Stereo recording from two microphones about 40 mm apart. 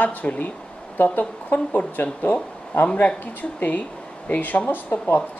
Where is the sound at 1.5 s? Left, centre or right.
Left.